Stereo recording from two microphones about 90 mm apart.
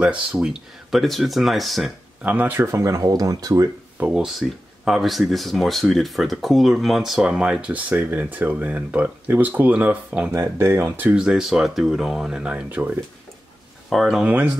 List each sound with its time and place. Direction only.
0.0 s speech: 15° right (ahead or behind)
0.9 s speech: centre (ahead or behind)
2.2 s speech: 20° right (ahead or behind); by 3.6 s 40° right (ahead or behind)
4.1 s speech: 5° right (ahead or behind)
10.3 s speech: 30° right (ahead or behind)
11.1 s speech: 10° right (ahead or behind)
13.8 s speech: centre (ahead or behind)
14.2 s speech: 20° right (ahead or behind)